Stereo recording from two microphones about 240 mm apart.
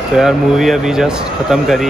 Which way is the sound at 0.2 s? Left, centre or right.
Centre.